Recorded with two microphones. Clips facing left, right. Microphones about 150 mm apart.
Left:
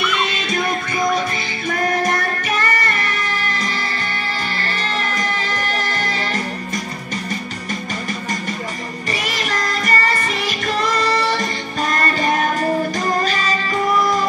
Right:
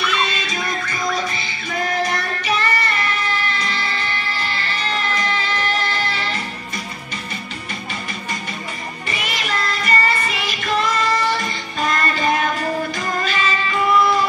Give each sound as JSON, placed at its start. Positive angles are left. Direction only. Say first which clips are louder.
{"t": 1.7, "sound": "music", "louder": "left 3 dB", "side_deg": 45}
{"t": 9.1, "sound": "music", "louder": "left 1 dB", "side_deg": 40}